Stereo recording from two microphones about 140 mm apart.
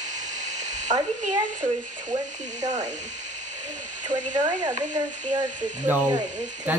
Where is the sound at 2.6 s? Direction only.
55° right (ahead or behind).